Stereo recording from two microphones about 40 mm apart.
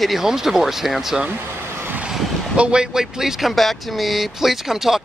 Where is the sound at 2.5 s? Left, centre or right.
Right; by 3.6 s centre.